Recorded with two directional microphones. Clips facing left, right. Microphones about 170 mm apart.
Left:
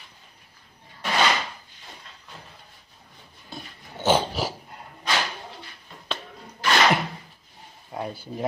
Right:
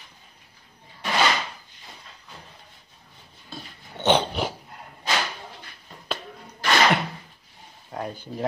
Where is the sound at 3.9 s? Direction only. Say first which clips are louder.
Right 1 dB; 5° left (ahead or behind).